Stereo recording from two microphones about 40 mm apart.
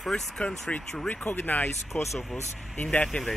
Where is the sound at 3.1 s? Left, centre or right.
Left.